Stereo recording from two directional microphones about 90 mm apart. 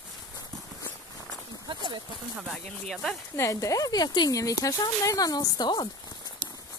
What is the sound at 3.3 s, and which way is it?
Speech, 35° left (ahead or behind).